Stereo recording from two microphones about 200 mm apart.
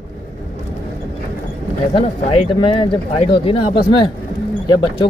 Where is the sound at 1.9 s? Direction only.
30° left (ahead or behind).